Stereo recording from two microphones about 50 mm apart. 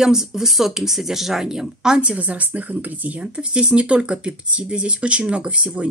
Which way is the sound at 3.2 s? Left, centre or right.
Centre.